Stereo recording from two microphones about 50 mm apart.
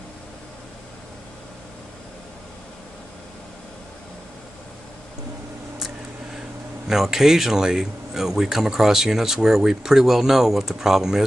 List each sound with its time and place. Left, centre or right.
6.9 s speech: centre